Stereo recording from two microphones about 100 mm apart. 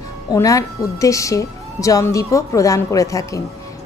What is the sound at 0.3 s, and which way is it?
A woman's voice, 35° left (ahead or behind).